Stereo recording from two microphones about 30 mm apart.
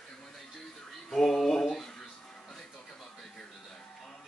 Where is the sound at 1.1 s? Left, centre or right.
Centre.